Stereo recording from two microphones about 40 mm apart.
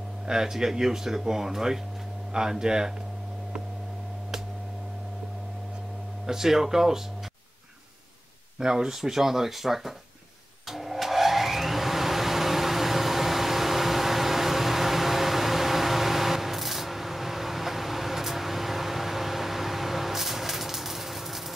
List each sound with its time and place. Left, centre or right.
0.3 s speech: centre
6.2 s speech: centre
8.5 s speech: centre
10.7 s vacuum cleaner: centre